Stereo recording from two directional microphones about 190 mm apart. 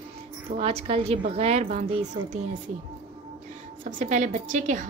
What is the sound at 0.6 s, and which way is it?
A woman's voice, 30° right (ahead or behind).